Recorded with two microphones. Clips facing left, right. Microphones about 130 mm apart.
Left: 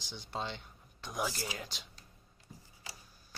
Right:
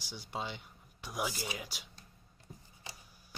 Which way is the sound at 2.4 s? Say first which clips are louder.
Right 1 dB; 20° right (ahead or behind).